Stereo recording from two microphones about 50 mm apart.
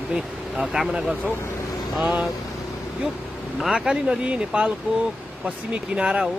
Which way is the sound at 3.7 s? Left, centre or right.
Centre.